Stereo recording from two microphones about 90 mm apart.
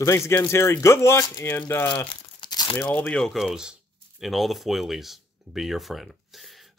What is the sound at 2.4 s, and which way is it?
Crumpling, 50° left (ahead or behind).